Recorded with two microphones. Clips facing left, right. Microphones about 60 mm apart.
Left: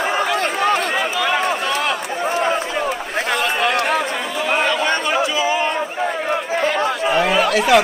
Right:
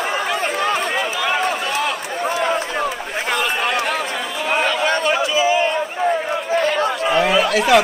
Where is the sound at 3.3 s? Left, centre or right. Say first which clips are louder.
Left 1 dB; left.